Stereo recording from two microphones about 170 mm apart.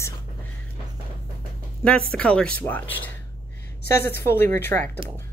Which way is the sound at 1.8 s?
5° left (ahead or behind).